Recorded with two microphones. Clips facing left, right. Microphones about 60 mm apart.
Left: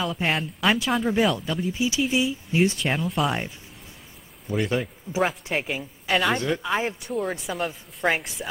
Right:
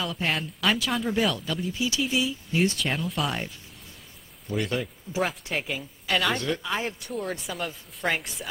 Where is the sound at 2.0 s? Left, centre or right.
Centre.